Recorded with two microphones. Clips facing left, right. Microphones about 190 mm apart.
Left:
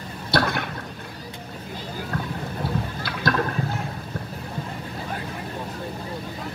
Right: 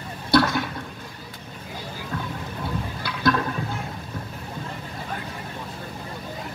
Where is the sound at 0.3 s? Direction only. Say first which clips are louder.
Right 4 dB; 60° left (ahead or behind).